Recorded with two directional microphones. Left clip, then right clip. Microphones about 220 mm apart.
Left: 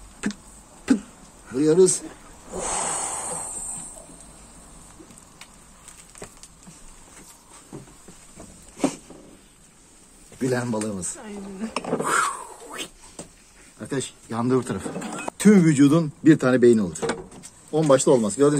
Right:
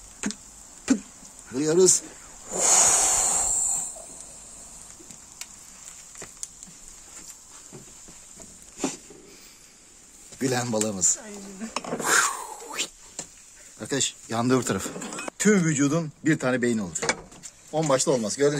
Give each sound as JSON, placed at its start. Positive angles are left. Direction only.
{"t": 0.2, "sound": "power windows", "side_deg": -30}
{"t": 0.9, "sound": "a sound", "side_deg": -35}
{"t": 1.6, "sound": "speech", "side_deg": -45}
{"t": 2.5, "sound": "snake", "side_deg": -55}
{"t": 10.4, "sound": "speech", "side_deg": -50}
{"t": 11.1, "sound": "speech", "side_deg": 5}
{"t": 12.0, "sound": "a sound", "side_deg": -50}
{"t": 13.7, "sound": "speech", "side_deg": -55}
{"t": 15.0, "sound": "speech", "side_deg": 5}